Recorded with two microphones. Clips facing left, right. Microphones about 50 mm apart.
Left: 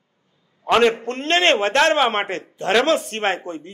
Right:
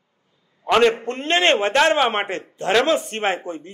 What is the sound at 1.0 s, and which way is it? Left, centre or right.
Speech, centre.